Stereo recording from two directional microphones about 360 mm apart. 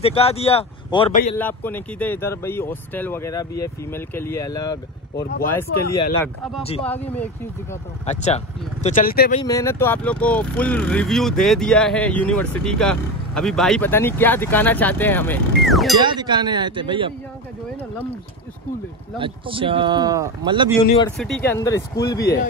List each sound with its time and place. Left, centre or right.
0.0 s speech: centre
1.4 s speech: centre
8.1 s speech: centre
9.4 s speech: centre
16.0 s speech: centre
19.1 s speech: centre
21.5 s speech: centre
22.2 s speech: left